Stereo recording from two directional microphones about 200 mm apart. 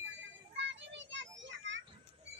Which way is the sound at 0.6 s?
65° right (ahead or behind).